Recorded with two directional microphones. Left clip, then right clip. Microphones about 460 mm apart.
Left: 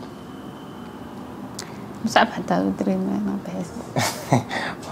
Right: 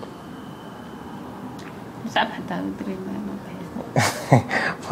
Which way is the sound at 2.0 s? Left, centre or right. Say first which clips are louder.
Left 5 dB; left.